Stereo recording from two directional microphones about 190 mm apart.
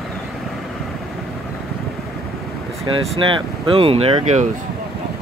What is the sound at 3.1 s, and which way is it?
Speech, 25° right (ahead or behind).